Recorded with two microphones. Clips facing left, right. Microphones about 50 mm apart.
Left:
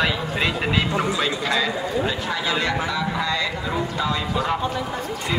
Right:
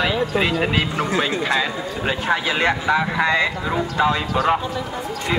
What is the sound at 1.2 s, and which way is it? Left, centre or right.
Speech, right.